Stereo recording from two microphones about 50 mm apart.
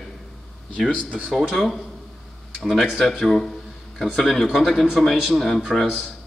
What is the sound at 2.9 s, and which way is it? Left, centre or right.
Speech, centre.